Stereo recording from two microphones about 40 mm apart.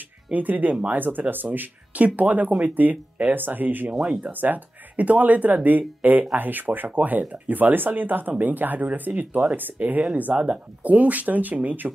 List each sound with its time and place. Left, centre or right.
0.3 s speech: right
10.3 s speech: right
10.8 s speech: right